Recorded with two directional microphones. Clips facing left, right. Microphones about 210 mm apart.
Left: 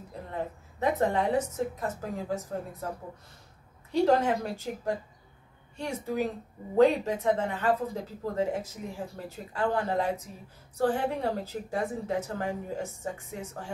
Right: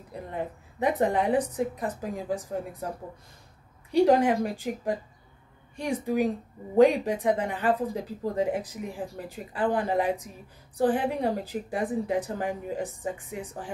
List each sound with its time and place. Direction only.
0.1 s a woman's voice: 15° right (ahead or behind)